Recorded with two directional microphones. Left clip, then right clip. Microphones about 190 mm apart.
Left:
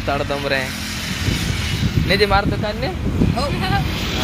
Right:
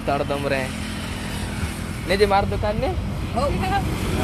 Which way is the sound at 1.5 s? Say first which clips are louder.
Left 7 dB; 45° right (ahead or behind).